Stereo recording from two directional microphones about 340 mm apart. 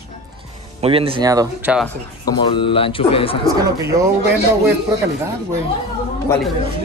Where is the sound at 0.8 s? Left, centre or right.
Centre.